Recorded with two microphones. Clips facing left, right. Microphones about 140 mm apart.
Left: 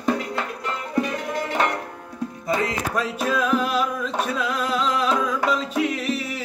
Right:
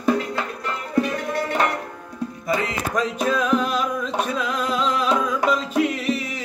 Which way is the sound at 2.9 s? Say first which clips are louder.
Right 3 dB; 5° left (ahead or behind).